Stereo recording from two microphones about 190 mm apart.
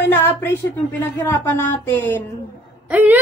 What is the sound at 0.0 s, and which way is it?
Speech, 10° left (ahead or behind).